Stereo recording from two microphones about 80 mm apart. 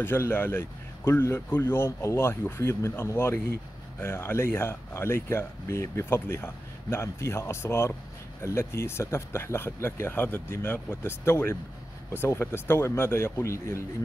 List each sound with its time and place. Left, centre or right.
0.0 s speech: left